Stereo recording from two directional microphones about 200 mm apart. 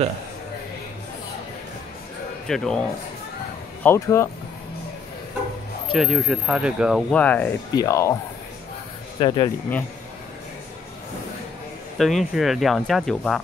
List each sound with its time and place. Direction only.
2.4 s speech: centre (ahead or behind)
3.8 s speech: 15° left (ahead or behind)
5.9 s speech: 5° right (ahead or behind); by 8.2 s 15° left (ahead or behind)
9.2 s speech: 25° left (ahead or behind)
12.0 s speech: centre (ahead or behind)